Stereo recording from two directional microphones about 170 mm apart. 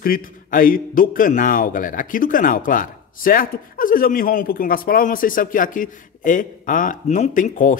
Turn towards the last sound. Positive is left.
turn(degrees=50)  # may be behind; listen again after turning